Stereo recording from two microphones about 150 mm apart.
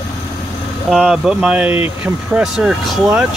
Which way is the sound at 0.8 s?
Centre (ahead or behind).